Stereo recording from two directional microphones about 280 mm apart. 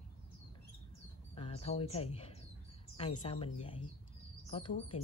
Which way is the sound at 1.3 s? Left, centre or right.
Left.